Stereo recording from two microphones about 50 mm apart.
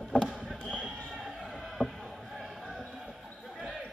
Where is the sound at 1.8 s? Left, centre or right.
Right.